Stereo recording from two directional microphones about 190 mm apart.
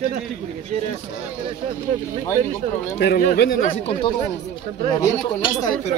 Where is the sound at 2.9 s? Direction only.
55° left (ahead or behind).